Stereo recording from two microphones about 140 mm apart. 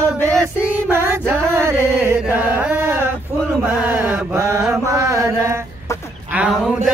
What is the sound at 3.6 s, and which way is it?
Mantra, 10° right (ahead or behind).